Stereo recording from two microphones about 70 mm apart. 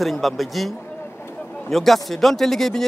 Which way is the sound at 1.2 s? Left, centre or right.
Left.